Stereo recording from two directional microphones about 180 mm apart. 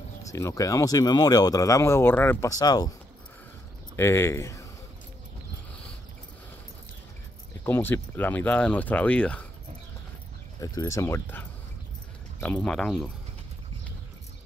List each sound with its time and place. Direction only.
0.2 s speech: 15° left (ahead or behind)
3.9 s speech: 15° left (ahead or behind)
7.6 s speech: 10° left (ahead or behind)
10.6 s speech: 20° left (ahead or behind); by 13.1 s 5° left (ahead or behind)